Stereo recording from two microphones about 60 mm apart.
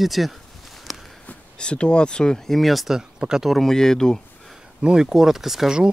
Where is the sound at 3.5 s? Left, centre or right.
Centre.